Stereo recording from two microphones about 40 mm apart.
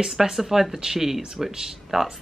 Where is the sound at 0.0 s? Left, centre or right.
Centre.